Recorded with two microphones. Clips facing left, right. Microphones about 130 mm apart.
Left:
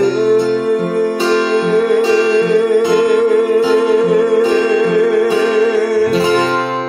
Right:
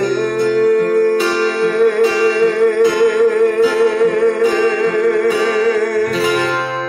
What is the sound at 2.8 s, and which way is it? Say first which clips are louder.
Music: even; 25° left (ahead or behind).